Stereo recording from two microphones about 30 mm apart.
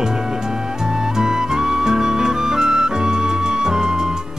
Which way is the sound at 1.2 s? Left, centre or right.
Right.